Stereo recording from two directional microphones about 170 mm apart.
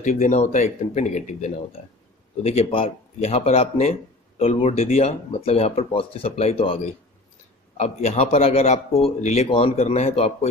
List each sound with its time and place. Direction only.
0.0 s a man's voice: 50° left (ahead or behind)